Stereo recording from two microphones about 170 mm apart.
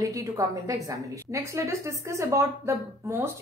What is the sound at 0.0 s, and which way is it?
Speech, 20° right (ahead or behind).